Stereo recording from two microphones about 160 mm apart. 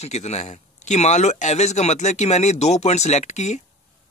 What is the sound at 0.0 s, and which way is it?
Speech, 45° left (ahead or behind).